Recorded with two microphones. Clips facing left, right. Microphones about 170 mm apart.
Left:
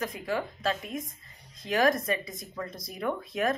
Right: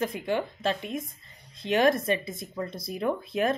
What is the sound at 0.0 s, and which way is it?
Speech, 30° right (ahead or behind).